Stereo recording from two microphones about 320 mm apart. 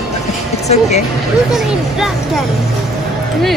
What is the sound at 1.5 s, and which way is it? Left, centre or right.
Speech, centre.